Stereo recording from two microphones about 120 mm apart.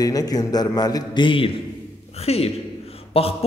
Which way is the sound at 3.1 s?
55° left (ahead or behind).